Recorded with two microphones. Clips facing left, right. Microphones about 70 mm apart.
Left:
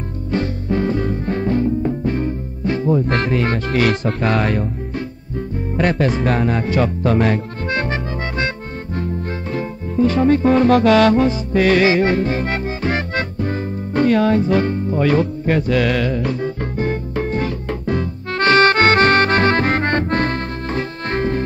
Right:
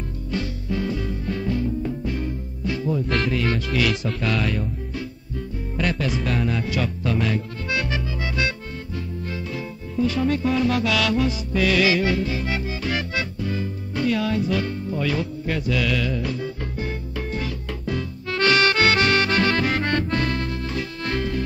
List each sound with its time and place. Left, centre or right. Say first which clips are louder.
0.3 s music: left 7 dB; left
5.8 s music: left 7 dB; left